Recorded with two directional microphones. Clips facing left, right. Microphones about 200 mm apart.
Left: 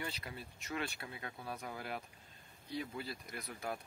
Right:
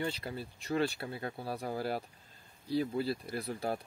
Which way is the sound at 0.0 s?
30° right (ahead or behind).